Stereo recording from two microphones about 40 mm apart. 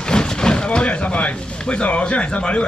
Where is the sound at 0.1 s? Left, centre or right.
Centre.